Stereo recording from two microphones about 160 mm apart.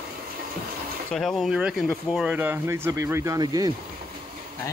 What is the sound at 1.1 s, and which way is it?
Speech, centre (ahead or behind).